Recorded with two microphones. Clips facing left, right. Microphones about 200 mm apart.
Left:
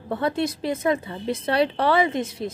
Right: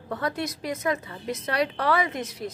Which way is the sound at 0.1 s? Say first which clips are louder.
Left 5 dB; 25° left (ahead or behind).